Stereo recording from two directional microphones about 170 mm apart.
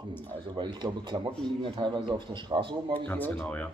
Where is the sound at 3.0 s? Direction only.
10° left (ahead or behind).